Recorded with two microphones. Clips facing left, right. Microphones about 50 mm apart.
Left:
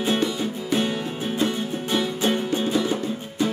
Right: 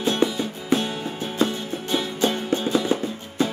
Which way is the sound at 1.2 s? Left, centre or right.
Centre.